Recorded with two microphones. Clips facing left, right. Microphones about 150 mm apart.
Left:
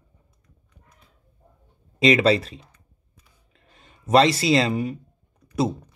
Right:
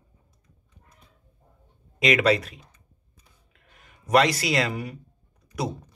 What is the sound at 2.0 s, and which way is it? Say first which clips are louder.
Speech: left 3 dB; 30° left (ahead or behind).